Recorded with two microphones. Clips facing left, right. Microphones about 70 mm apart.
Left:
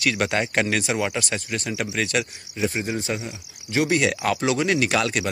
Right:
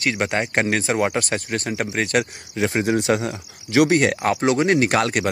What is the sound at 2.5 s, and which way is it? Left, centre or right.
Speech, right.